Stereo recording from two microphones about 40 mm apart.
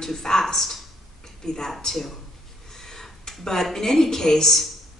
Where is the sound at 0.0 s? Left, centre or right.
Centre.